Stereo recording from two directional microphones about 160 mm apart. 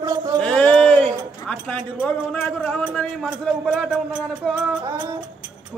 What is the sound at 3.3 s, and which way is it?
Speech, 5° right (ahead or behind).